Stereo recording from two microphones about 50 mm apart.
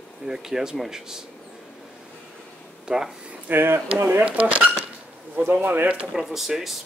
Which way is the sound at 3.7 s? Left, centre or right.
Right.